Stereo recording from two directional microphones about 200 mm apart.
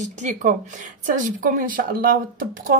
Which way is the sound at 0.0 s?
40° right (ahead or behind).